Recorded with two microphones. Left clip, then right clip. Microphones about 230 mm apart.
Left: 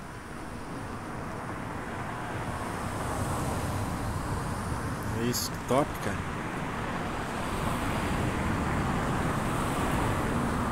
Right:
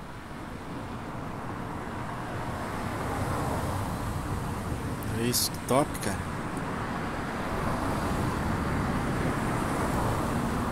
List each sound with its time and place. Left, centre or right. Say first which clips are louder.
5.2 s speech: right 4 dB; centre